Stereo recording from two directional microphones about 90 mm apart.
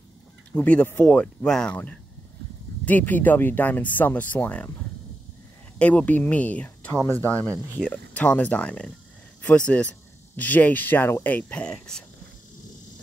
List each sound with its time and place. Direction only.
0.5 s speech: 15° left (ahead or behind)
5.8 s speech: 15° left (ahead or behind)